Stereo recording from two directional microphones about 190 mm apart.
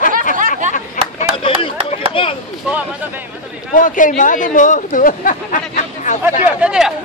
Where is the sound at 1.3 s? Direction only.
25° left (ahead or behind).